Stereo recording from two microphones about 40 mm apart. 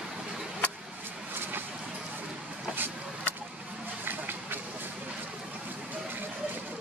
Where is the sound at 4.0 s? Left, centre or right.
Right.